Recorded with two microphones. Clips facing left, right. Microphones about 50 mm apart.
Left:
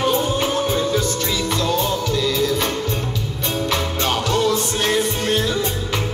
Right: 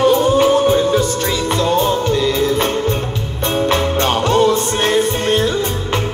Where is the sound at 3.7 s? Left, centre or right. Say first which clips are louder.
Right 5 dB; right.